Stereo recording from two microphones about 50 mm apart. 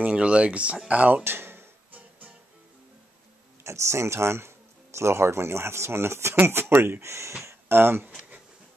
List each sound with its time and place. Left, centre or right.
0.0 s speech: right
1.2 s a sound: right
1.9 s music: right
3.6 s speech: right
7.4 s speech: right